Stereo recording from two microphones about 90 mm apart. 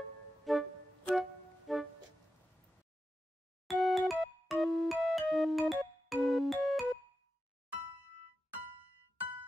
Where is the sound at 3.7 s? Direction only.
Centre (ahead or behind).